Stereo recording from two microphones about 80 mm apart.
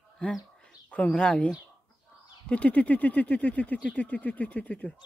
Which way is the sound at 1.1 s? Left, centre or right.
Centre.